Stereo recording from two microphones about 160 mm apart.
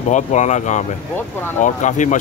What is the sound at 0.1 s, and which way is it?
Speech, 45° left (ahead or behind).